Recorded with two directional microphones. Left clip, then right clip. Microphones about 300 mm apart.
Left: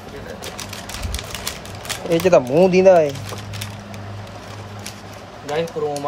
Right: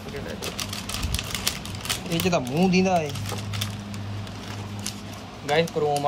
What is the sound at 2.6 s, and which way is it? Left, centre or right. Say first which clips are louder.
Speech: left 9 dB; centre.